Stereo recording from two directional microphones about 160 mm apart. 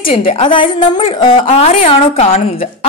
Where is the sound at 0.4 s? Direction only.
30° left (ahead or behind).